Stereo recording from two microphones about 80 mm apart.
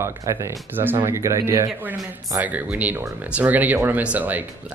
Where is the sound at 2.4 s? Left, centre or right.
Centre.